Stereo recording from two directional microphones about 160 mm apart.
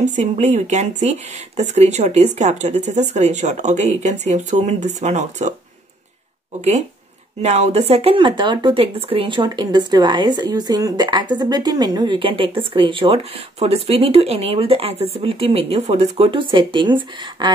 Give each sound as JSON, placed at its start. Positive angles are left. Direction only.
{"t": 0.0, "sound": "speech", "side_deg": -45}
{"t": 7.4, "sound": "speech", "side_deg": -40}